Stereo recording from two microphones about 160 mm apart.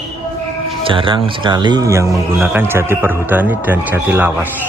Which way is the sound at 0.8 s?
30° right (ahead or behind).